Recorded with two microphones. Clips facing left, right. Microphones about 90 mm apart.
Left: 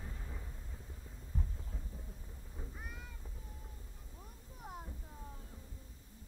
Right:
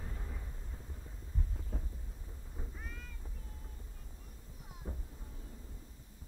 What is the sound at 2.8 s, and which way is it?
Cat, 15° left (ahead or behind).